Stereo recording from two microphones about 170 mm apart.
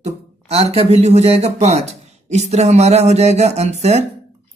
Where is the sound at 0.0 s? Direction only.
35° right (ahead or behind).